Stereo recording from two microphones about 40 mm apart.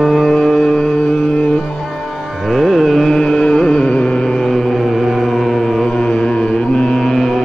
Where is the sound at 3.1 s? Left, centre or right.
Centre.